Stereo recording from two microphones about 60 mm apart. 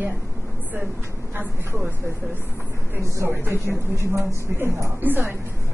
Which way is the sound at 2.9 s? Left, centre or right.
Right.